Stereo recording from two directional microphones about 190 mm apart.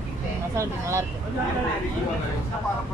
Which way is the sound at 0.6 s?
15° right (ahead or behind).